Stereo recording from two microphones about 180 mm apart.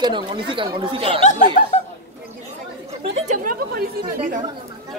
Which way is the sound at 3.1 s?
40° right (ahead or behind).